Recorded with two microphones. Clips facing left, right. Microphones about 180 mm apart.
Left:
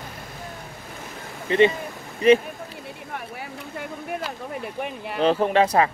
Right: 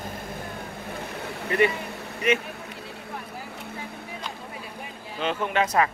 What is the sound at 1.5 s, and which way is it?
Speech, 25° left (ahead or behind).